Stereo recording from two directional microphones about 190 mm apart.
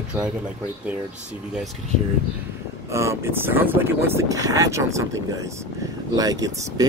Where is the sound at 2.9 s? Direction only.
15° right (ahead or behind).